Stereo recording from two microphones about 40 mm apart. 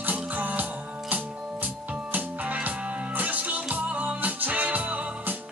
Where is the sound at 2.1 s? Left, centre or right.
Right.